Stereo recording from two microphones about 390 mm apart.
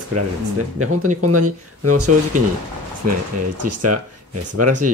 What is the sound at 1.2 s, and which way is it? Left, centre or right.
Speech, right.